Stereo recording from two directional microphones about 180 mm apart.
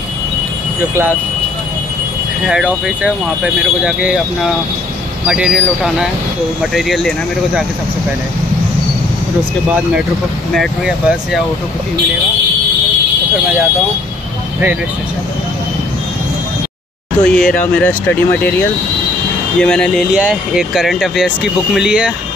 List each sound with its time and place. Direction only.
2.4 s speech: 5° right (ahead or behind)
5.2 s speech: 5° right (ahead or behind)
10.5 s speech: centre (ahead or behind)
17.2 s speech: 5° left (ahead or behind)